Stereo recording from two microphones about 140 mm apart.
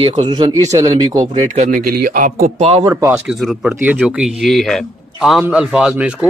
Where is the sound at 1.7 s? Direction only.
90° right.